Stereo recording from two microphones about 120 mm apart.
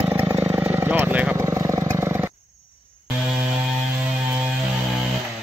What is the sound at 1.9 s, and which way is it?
Wild animals, 20° right (ahead or behind).